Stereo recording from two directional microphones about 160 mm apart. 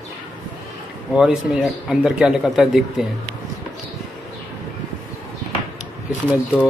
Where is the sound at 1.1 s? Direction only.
5° right (ahead or behind).